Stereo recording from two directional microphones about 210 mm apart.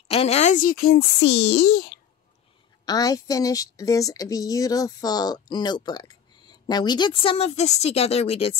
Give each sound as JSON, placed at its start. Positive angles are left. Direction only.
{"t": 0.1, "sound": "a child's voice", "side_deg": 30}
{"t": 2.8, "sound": "a woman's voice", "side_deg": 20}